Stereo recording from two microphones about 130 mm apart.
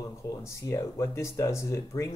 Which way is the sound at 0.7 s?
20° left (ahead or behind).